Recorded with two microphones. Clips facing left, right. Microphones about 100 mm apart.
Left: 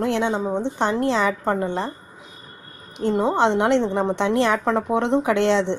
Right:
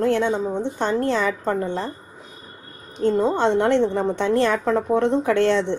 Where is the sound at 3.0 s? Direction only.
20° left (ahead or behind).